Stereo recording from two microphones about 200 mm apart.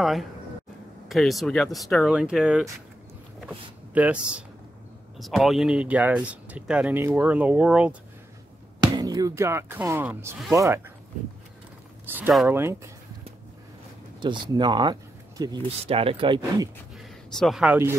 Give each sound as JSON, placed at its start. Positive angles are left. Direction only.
{"t": 0.0, "sound": "speech", "side_deg": 0}
{"t": 8.8, "sound": "speech", "side_deg": -20}
{"t": 12.1, "sound": "speech", "side_deg": -5}
{"t": 14.2, "sound": "speech", "side_deg": -25}
{"t": 16.9, "sound": "a sound", "side_deg": 0}